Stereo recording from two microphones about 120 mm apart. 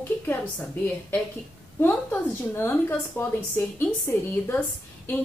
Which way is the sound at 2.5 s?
20° left (ahead or behind).